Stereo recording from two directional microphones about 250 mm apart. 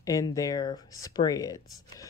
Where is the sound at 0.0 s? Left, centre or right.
Centre.